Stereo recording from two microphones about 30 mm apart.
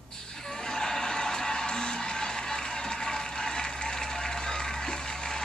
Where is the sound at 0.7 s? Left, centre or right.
Centre.